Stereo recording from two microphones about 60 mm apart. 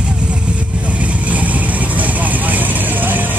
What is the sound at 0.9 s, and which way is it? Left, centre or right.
Vehicle, right.